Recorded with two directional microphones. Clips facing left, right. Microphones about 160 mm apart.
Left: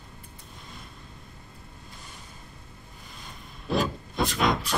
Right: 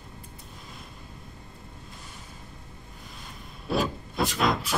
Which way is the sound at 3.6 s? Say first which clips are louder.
Even; centre (ahead or behind).